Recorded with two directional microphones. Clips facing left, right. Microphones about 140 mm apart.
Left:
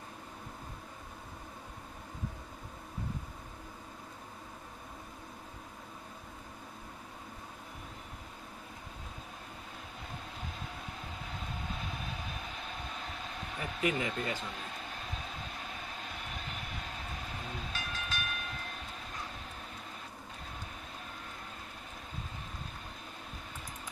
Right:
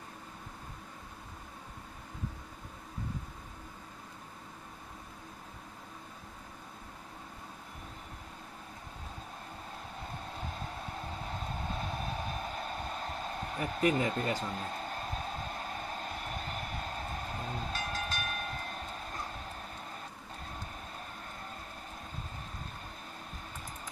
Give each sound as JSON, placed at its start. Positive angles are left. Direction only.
{"t": 11.2, "sound": "vehicle", "side_deg": -40}